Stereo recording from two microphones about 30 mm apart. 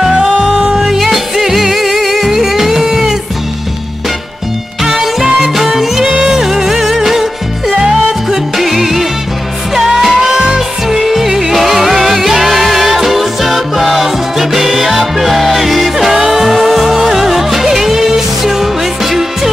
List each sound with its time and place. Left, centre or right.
0.4 s music: right
0.7 s music: centre
4.8 s music: centre
16.1 s music: centre